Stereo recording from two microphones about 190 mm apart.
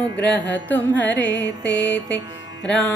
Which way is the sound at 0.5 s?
10° left (ahead or behind).